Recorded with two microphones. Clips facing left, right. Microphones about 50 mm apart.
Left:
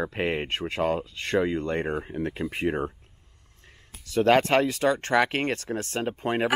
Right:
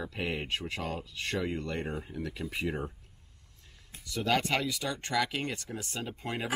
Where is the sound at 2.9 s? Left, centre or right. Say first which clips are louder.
Left 3 dB; left.